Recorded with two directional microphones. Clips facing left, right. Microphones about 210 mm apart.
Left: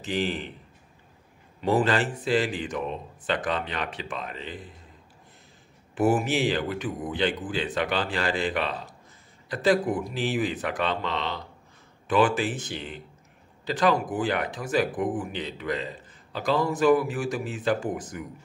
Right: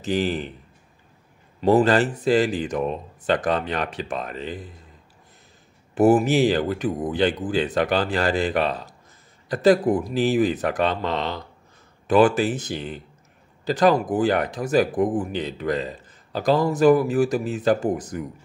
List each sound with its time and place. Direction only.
0.0 s speech: 40° right (ahead or behind)
1.6 s speech: 40° right (ahead or behind)
5.9 s speech: 40° right (ahead or behind)